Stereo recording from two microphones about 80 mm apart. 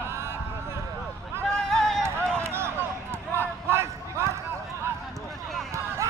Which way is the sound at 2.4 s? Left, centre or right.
Right.